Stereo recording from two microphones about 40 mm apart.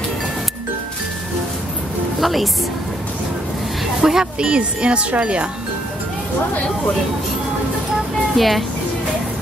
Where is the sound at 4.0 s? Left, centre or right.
Centre.